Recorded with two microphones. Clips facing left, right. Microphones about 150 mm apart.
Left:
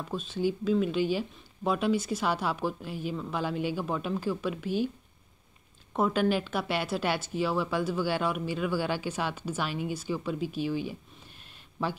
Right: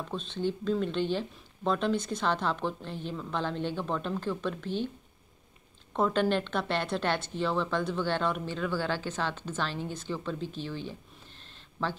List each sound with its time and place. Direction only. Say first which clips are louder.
0.1 s a woman's voice: left 3 dB; 5° left (ahead or behind)
5.9 s a woman's voice: even; 5° left (ahead or behind)